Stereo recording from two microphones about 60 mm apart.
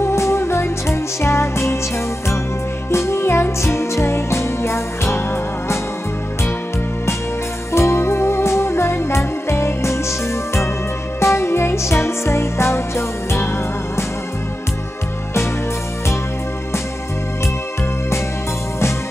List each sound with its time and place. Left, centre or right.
0.0 s music: left
2.9 s music: left
7.7 s music: left